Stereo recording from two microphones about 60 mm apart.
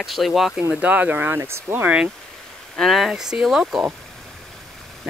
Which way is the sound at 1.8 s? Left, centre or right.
Right.